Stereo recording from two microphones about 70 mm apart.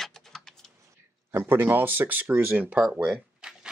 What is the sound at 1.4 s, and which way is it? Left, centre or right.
Speech, right.